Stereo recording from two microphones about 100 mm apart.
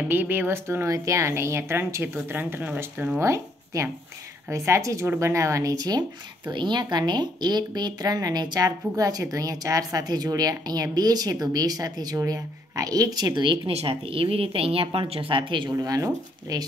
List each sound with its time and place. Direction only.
0.1 s speech: 20° right (ahead or behind)
3.2 s speech: 30° right (ahead or behind); by 13.6 s 50° right (ahead or behind)
13.7 s speech: 70° right (ahead or behind); by 15.7 s 55° right (ahead or behind)
15.7 s speech: 35° right (ahead or behind)